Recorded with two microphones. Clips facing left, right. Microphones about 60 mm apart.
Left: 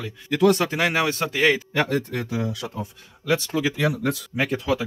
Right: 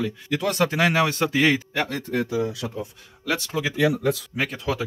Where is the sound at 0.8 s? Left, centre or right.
Left.